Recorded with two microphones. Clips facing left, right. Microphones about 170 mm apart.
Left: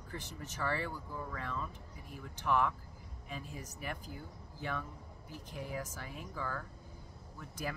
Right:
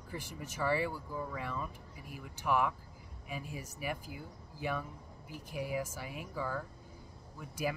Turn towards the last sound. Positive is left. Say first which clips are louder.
# right 5 dB
turn(degrees=-10)  # may be behind; listen again after turning